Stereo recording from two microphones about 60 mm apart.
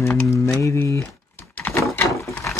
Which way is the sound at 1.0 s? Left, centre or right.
Left.